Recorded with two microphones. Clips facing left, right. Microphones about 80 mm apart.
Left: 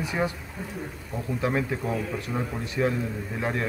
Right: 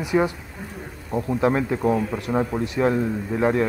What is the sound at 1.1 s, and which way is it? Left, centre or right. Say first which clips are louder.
Speech: right 7 dB; right.